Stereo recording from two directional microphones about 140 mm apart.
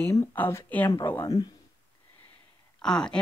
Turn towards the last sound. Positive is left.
turn(degrees=5)  # may be behind; listen again after turning